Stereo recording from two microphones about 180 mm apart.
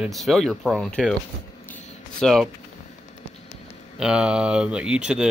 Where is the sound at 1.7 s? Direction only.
5° left (ahead or behind).